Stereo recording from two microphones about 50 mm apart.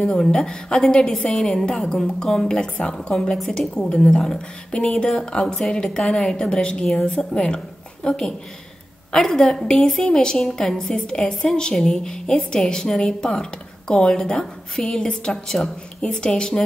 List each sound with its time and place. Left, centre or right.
0.0 s a woman's voice: centre